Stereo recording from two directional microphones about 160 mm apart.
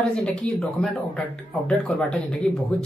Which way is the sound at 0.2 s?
5° left (ahead or behind).